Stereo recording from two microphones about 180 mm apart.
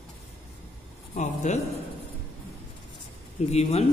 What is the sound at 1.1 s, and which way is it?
Speech, 40° left (ahead or behind).